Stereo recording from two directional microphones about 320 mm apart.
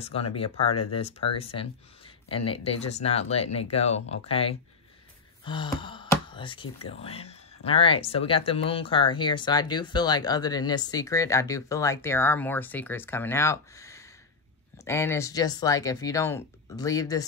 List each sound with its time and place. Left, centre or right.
0.0 s speech: centre